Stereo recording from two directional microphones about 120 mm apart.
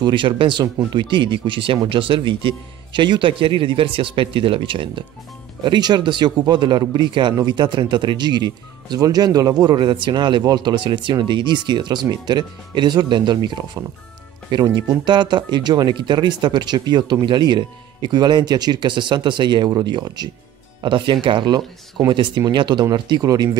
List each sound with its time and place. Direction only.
0.0 s a man's voice: 45° right (ahead or behind)